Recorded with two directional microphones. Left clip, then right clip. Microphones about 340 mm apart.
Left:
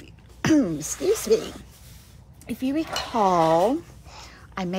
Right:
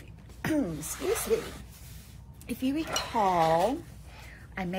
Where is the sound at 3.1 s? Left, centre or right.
Left.